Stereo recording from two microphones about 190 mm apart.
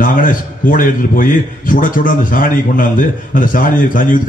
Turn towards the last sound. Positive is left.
turn(degrees=45)  # may be behind; listen again after turning